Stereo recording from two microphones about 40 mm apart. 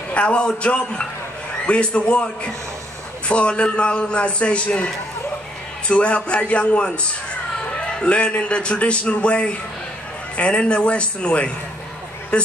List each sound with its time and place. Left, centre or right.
0.1 s a man's voice: left